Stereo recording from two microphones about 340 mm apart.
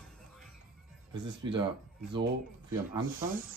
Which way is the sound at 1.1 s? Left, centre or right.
Right.